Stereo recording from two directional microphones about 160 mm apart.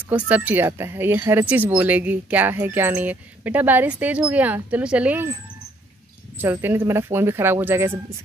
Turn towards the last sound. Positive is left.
turn(degrees=-15)  # may be behind; listen again after turning